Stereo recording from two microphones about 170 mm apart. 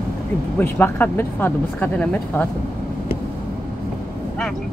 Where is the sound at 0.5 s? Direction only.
10° left (ahead or behind).